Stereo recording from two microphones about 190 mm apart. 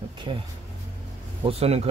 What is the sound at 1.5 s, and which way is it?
Speech, 35° right (ahead or behind).